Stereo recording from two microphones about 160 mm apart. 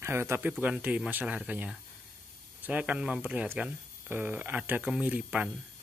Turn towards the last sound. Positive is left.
turn(degrees=-10)  # may be behind; listen again after turning